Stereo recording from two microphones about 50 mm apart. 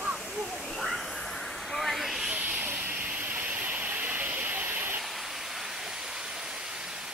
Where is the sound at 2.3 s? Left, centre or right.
Right.